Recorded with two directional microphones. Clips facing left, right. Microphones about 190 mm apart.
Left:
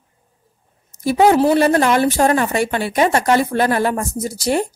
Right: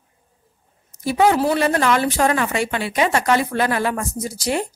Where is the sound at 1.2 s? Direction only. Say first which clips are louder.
Left 4 dB; 25° left (ahead or behind).